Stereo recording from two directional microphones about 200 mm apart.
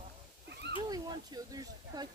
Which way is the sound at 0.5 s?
55° right (ahead or behind).